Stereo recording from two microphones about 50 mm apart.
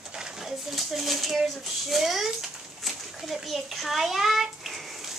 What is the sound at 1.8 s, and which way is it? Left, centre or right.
A child's voice, centre.